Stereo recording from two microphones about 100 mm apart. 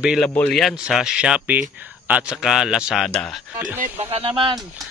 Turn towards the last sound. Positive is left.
turn(degrees=-80)